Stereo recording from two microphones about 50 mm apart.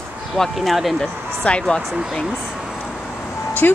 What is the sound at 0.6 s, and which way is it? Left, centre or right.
Speech, centre.